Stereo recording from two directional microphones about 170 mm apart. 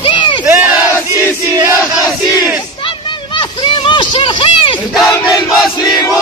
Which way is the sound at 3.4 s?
30° left (ahead or behind).